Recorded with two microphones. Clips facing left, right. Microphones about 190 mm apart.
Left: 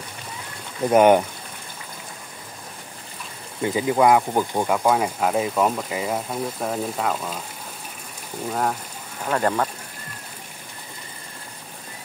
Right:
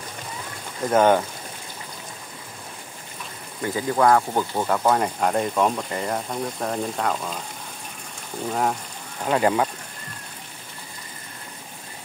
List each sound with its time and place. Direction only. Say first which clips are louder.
0.8 s speech: left 3 dB; 15° left (ahead or behind)
3.6 s speech: left 2 dB; 15° left (ahead or behind)
8.5 s speech: even; centre (ahead or behind)